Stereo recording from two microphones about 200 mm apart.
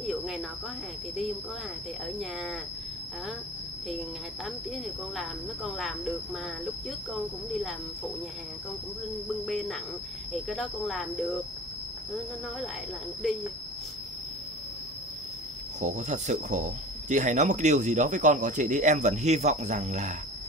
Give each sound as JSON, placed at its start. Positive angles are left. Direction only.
{"t": 0.0, "sound": "cricket", "side_deg": 0}
{"t": 5.1, "sound": "speech", "side_deg": 0}
{"t": 9.5, "sound": "speech", "side_deg": 0}
{"t": 15.8, "sound": "speech", "side_deg": -35}